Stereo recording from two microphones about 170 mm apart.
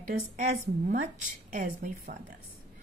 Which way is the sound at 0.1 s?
50° right (ahead or behind).